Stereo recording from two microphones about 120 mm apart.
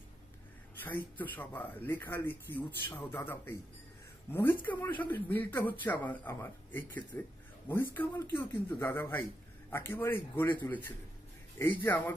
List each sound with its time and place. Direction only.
0.8 s speech: 15° left (ahead or behind)
4.3 s speech: 20° left (ahead or behind)